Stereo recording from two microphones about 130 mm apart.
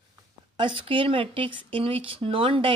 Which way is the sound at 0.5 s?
40° right (ahead or behind).